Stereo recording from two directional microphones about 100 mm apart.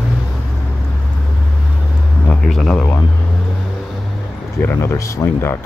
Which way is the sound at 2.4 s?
5° left (ahead or behind).